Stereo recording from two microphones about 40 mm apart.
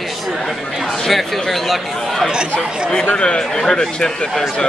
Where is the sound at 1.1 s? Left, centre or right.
Centre.